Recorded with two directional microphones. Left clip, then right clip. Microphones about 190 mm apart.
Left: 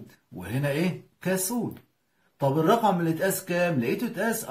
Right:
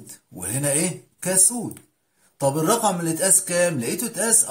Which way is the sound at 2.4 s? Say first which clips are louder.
Right 2 dB; 35° right (ahead or behind).